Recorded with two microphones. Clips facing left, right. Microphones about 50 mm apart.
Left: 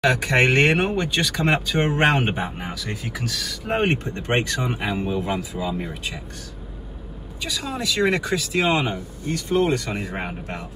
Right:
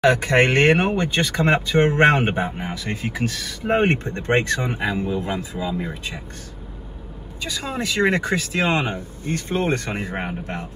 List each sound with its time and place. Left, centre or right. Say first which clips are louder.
0.0 s speech: right 2 dB; right
7.4 s speech: right 1 dB; right